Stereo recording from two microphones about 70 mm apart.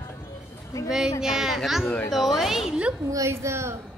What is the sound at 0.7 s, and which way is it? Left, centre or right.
Speech, left.